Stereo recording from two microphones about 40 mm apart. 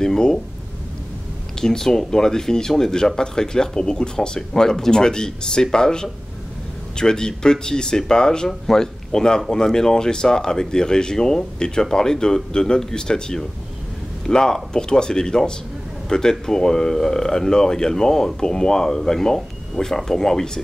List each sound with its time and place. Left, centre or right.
0.0 s speech: centre
1.6 s speech: centre